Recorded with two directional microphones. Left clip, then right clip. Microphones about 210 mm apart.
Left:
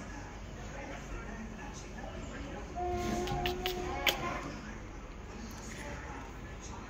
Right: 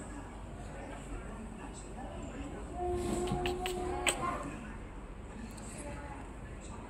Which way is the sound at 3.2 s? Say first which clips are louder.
Even; 10° right (ahead or behind).